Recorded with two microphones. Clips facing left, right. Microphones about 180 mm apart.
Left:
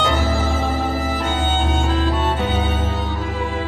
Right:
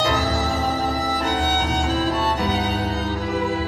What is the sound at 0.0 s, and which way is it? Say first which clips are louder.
Music: left 1 dB; 40° right (ahead or behind).